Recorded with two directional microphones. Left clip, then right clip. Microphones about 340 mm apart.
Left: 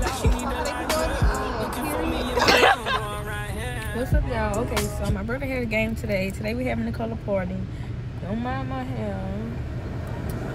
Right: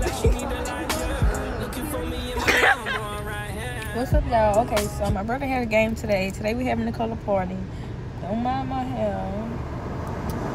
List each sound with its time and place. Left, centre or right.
0.0 s music: centre
3.9 s speech: centre
8.5 s speech: centre